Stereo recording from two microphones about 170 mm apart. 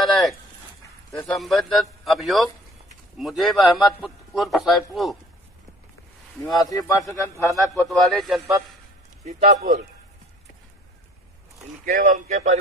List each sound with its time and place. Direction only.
0.0 s a sound: centre (ahead or behind)
1.1 s a man's voice: 5° left (ahead or behind)
6.5 s speech: 20° left (ahead or behind)
7.8 s a man's voice: 5° left (ahead or behind)
9.2 s speech: 45° right (ahead or behind)
11.8 s speech: 50° right (ahead or behind)